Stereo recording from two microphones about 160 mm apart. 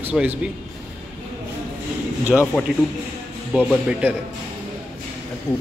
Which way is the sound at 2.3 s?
Centre (ahead or behind).